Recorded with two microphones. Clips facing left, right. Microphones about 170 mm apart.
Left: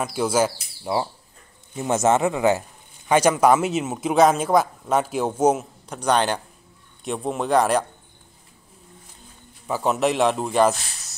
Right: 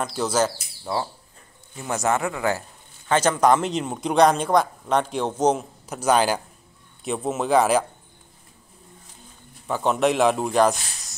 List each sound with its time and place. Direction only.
0.0 s speech: 10° left (ahead or behind)
5.9 s a man's voice: 5° right (ahead or behind)
9.7 s a man's voice: 5° left (ahead or behind)